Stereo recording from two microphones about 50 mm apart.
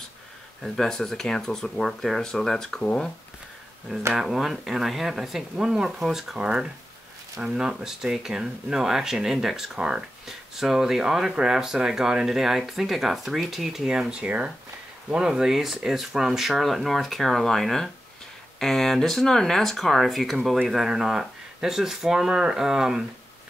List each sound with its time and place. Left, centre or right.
0.7 s speech: centre
4.1 s speech: centre
14.1 s speech: right